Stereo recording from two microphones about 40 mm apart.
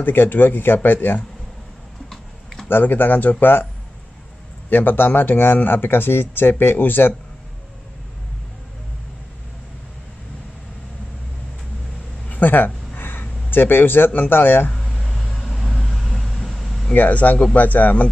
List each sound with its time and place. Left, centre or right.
0.0 s speech: left
2.8 s speech: left
4.6 s speech: left
12.3 s a sound: left
13.5 s speech: left
14.7 s vehicle: centre
16.9 s speech: left